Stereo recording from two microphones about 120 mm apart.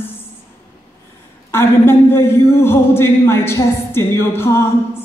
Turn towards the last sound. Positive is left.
turn(degrees=20)  # may be behind; listen again after turning